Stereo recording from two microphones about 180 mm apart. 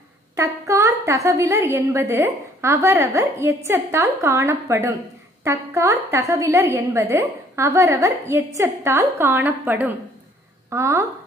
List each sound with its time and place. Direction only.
0.4 s a woman's voice: 15° right (ahead or behind)